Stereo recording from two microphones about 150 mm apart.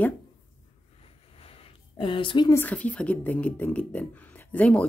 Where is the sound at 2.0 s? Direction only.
35° left (ahead or behind).